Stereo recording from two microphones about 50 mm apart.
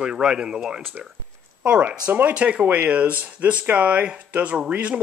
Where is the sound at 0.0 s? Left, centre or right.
Centre.